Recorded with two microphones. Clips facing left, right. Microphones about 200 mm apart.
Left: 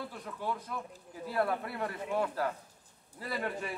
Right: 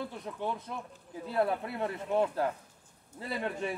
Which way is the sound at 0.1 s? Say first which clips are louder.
Right 2 dB; 25° right (ahead or behind).